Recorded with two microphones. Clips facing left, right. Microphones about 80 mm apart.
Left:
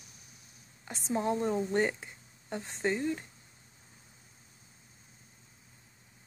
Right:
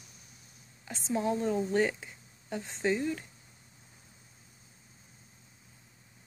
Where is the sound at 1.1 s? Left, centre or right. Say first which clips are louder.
Even; centre.